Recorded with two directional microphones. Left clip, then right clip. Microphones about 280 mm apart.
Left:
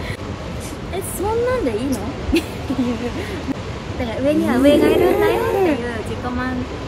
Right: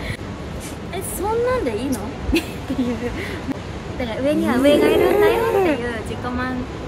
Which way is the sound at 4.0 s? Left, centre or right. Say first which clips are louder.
Left 2 dB; centre.